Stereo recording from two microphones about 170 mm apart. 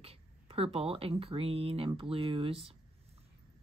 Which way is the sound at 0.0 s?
35° right (ahead or behind).